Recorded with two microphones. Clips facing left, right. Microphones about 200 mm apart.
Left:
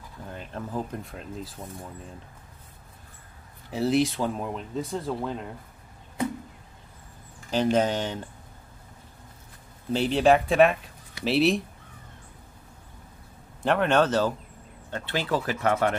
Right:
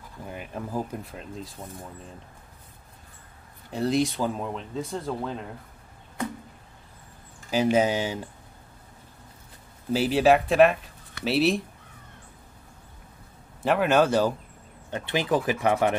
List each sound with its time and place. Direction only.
0.2 s speech: 10° right (ahead or behind)
3.7 s speech: 5° left (ahead or behind)
7.5 s speech: 10° right (ahead or behind)
9.9 s speech: 5° right (ahead or behind)
13.6 s speech: 5° right (ahead or behind)